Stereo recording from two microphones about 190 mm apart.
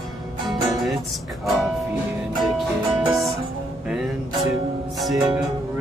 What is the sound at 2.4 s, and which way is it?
Music, centre (ahead or behind).